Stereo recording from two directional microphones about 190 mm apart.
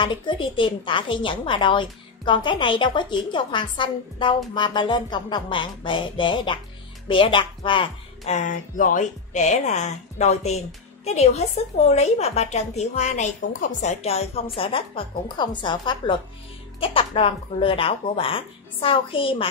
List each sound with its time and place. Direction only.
0.0 s a woman's voice: 25° left (ahead or behind)
8.4 s a woman's voice: 45° left (ahead or behind); by 19.4 s 30° left (ahead or behind)